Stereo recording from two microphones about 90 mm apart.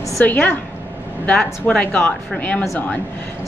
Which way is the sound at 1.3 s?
10° left (ahead or behind).